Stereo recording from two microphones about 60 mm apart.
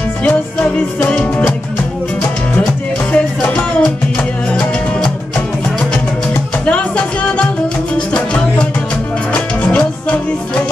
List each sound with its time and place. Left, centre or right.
0.2 s music: left
3.1 s music: centre
6.6 s music: left